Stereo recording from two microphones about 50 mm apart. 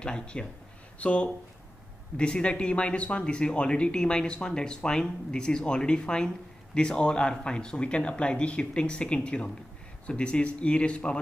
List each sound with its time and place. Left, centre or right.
0.0 s speech: centre